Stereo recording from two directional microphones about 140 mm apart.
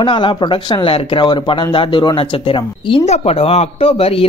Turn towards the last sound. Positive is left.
turn(degrees=45)  # may be behind; listen again after turning